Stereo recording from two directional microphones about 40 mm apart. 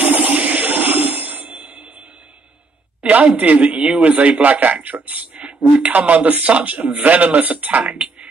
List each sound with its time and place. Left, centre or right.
0.0 s music: right
3.0 s a sound: right
3.3 s a man's voice: right
3.7 s a man's voice: right
4.0 s a man's voice: right